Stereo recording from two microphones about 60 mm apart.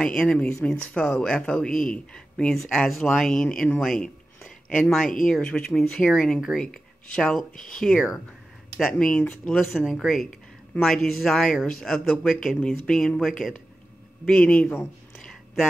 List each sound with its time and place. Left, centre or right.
0.0 s speech: centre
8.9 s speech: left
9.5 s speech: centre
14.2 s speech: centre